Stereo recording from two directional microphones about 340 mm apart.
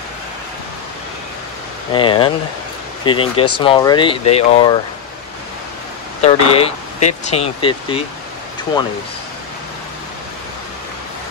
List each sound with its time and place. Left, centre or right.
1.9 s speech: centre
6.2 s speech: centre